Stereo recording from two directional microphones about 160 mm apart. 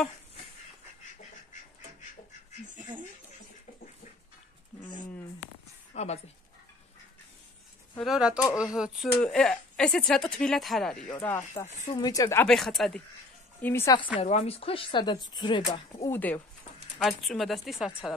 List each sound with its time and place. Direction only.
5.9 s a woman's voice: 40° left (ahead or behind)
8.0 s speech: 5° right (ahead or behind)
11.2 s speech: 15° left (ahead or behind)
12.4 s speech: centre (ahead or behind)
13.6 s speech: 15° left (ahead or behind)
14.2 s speech: 40° left (ahead or behind)
16.1 s speech: 10° left (ahead or behind)